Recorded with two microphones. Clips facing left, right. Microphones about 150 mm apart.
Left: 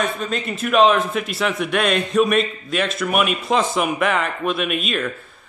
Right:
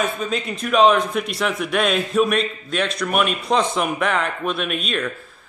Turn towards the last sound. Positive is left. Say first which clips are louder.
# left 1 dB
turn(degrees=0)  # may be behind; listen again after turning